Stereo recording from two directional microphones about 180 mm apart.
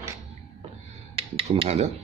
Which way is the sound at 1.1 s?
35° right (ahead or behind).